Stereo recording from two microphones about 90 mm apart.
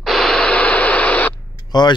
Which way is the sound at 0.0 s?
5° left (ahead or behind).